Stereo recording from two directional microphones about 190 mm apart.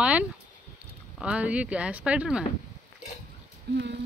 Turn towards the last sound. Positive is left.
turn(degrees=-65)  # may be behind; listen again after turning